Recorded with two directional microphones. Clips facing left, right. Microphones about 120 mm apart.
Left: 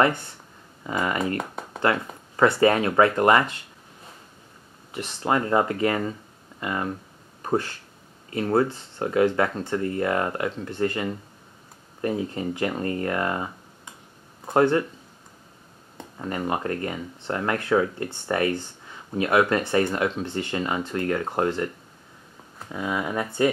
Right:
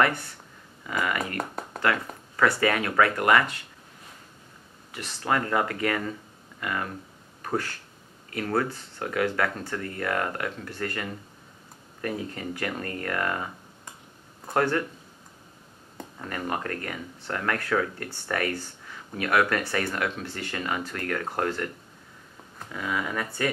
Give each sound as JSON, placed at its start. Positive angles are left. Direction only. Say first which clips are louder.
{"t": 0.8, "sound": "speech", "louder": "left 3 dB", "side_deg": 30}
{"t": 1.4, "sound": "a sound", "louder": "even", "side_deg": 0}
{"t": 2.3, "sound": "speech", "louder": "left 5 dB", "side_deg": 30}
{"t": 4.9, "sound": "speech", "louder": "left 3 dB", "side_deg": 25}
{"t": 16.2, "sound": "speech", "louder": "left 4 dB", "side_deg": 20}
{"t": 22.7, "sound": "speech", "louder": "left 3 dB", "side_deg": 20}